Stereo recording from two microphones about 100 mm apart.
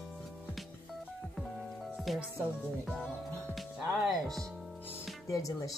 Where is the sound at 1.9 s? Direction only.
Centre (ahead or behind).